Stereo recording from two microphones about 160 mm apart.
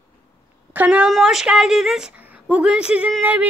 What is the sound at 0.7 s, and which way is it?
A woman's voice, 10° right (ahead or behind).